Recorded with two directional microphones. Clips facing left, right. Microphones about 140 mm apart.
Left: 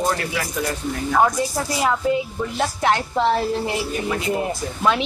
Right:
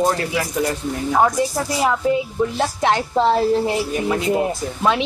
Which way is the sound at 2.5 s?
25° right (ahead or behind).